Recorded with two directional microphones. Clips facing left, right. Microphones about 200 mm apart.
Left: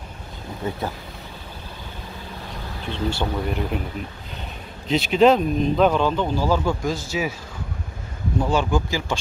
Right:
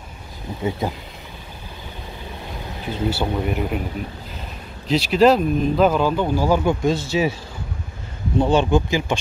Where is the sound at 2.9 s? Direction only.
5° right (ahead or behind).